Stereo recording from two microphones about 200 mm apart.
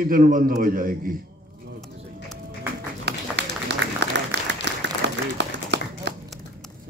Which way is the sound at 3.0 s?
60° right (ahead or behind).